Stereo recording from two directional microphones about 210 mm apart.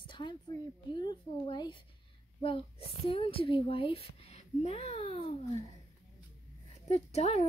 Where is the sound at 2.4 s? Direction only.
25° left (ahead or behind).